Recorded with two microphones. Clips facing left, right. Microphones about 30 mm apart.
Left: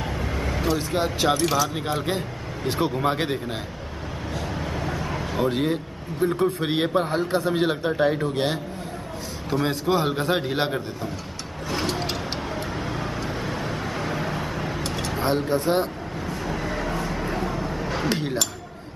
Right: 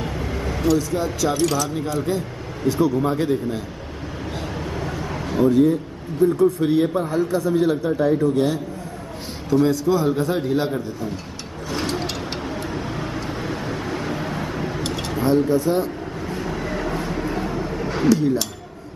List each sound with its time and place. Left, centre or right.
0.0 s vehicle: centre
0.7 s a man's voice: left
1.4 s speech: left
1.8 s a man's voice: left
4.6 s vehicle: centre
5.5 s a man's voice: left
9.5 s a man's voice: left
12.0 s vehicle: centre
13.0 s vehicle: centre
15.1 s a man's voice: left
16.4 s a sound: centre
17.4 s vehicle: centre
18.0 s speech: left